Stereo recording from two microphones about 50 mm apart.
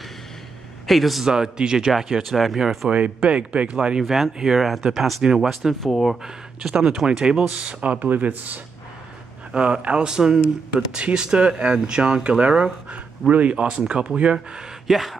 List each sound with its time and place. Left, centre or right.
0.8 s speech: centre
1.2 s speech: centre
2.9 s speech: right
4.0 s speech: centre
6.2 s speech: centre
7.6 s speech: right
9.5 s speech: right
14.9 s speech: centre